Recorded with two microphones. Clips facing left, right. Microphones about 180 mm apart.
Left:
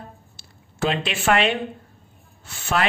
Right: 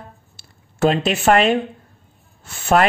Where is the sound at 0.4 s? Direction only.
45° right (ahead or behind).